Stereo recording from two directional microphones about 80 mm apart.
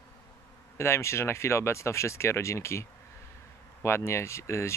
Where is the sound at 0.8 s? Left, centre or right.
Left.